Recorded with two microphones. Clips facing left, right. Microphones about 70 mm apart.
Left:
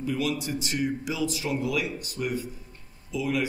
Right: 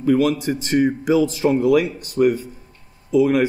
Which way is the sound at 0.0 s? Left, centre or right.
Right.